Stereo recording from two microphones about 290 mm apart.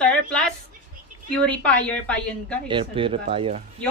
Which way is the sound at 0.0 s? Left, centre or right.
Centre.